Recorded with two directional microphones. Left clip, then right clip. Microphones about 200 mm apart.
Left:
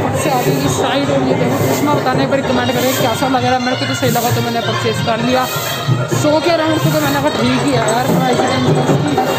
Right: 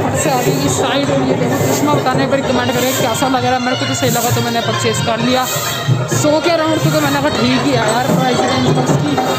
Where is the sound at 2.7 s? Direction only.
15° right (ahead or behind).